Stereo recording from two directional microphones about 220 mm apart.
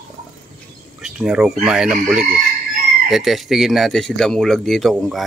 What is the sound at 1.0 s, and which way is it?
Speech, 5° right (ahead or behind).